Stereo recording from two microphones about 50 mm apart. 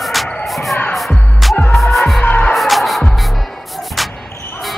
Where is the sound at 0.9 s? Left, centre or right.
Centre.